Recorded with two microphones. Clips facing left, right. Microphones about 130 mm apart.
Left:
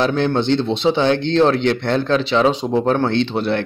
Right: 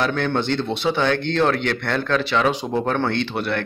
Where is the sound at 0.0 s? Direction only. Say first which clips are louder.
Left 4 dB; 25° left (ahead or behind).